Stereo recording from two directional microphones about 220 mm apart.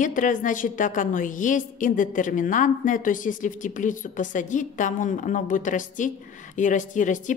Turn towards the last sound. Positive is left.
turn(degrees=35)  # may be behind; listen again after turning